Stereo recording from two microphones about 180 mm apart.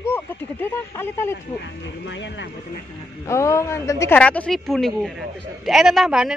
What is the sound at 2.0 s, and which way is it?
Speech, 80° left.